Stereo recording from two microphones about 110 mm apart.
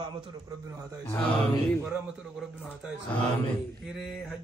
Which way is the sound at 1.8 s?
5° right (ahead or behind).